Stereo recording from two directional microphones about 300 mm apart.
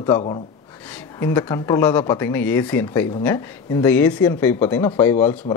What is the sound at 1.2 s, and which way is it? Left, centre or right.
Speech, centre.